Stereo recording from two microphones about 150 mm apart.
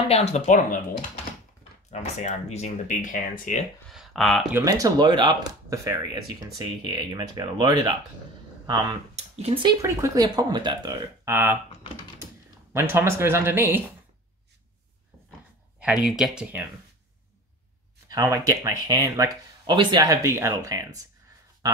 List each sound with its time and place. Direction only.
0.1 s speech: 45° left (ahead or behind)
1.9 s speech: 50° left (ahead or behind)
3.9 s speech: centre (ahead or behind)
4.6 s speech: 25° right (ahead or behind)
9.1 s speech: 40° right (ahead or behind)
9.8 s speech: 25° right (ahead or behind)
12.7 s speech: 15° right (ahead or behind)
15.8 s speech: 5° right (ahead or behind)
18.0 s speech: 25° right (ahead or behind)